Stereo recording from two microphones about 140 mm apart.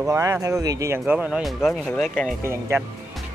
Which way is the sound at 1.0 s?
10° right (ahead or behind).